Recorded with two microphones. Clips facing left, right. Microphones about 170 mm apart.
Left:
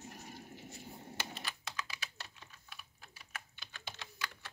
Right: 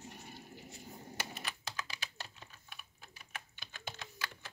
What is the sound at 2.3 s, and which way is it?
Typing, 20° right (ahead or behind).